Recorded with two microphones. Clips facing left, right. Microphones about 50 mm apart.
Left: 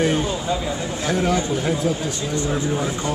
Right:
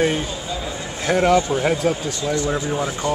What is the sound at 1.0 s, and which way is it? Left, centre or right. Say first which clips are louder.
Speech: right 5 dB; right.